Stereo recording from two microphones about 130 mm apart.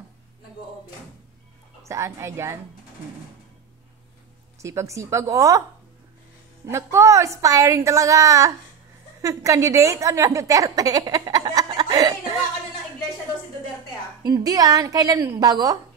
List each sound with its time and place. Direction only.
1.9 s a woman's voice: 20° right (ahead or behind)
4.6 s a woman's voice: 25° right (ahead or behind)
6.7 s a woman's voice: 20° right (ahead or behind)
14.2 s a woman's voice: 30° right (ahead or behind)